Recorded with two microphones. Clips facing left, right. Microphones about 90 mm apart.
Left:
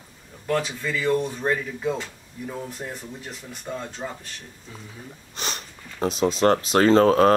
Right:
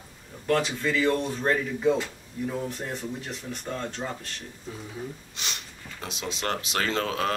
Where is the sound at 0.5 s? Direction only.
5° left (ahead or behind).